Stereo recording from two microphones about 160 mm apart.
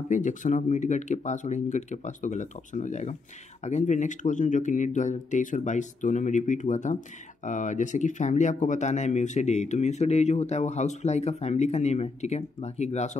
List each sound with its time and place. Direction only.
0.1 s speech: 50° left (ahead or behind)